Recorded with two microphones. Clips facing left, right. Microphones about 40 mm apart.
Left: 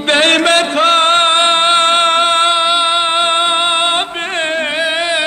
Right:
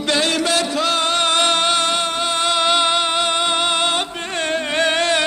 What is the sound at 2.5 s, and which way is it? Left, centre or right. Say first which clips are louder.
Music: left 4 dB; left.